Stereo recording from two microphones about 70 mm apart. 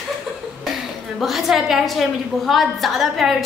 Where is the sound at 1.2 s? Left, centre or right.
Centre.